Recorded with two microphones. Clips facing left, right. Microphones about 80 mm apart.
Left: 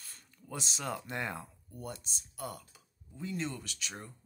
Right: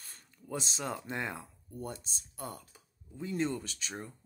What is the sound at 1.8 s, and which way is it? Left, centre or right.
Speech, right.